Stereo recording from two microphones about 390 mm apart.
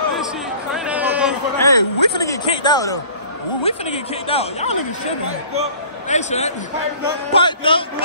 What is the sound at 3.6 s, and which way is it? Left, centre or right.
A man's voice, centre.